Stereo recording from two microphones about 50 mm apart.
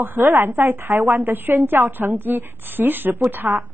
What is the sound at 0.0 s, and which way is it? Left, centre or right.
A woman's voice, right.